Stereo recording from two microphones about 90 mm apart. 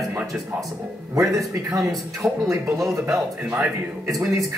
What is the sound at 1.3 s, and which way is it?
Speech, 35° right (ahead or behind).